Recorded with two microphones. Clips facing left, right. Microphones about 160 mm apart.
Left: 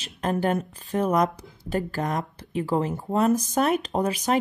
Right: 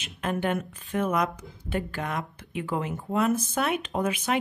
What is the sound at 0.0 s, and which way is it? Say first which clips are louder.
Speech: left 3 dB; 35° left (ahead or behind).